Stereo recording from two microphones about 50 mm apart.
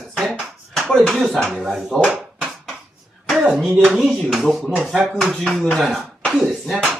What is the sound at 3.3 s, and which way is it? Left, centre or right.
Speech, centre.